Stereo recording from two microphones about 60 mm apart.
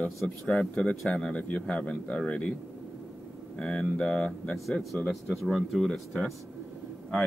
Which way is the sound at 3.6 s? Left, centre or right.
Centre.